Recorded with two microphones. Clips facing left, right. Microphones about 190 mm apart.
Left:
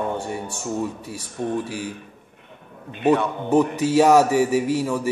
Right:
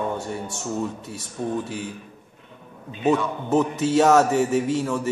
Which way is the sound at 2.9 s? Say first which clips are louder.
Left 2 dB; 60° left (ahead or behind).